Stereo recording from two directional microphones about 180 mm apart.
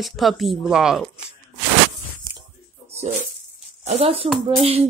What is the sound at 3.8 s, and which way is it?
Speech, 35° right (ahead or behind).